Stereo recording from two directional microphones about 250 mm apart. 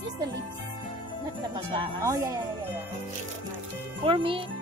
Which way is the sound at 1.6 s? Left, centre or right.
Centre.